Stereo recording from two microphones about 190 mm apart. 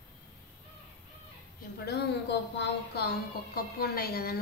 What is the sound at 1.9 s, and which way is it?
A woman's voice, 65° left (ahead or behind).